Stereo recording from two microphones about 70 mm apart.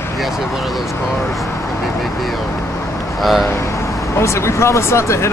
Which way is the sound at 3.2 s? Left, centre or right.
Centre.